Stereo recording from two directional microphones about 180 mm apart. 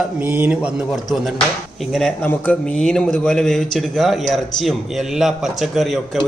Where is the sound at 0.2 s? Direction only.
10° right (ahead or behind).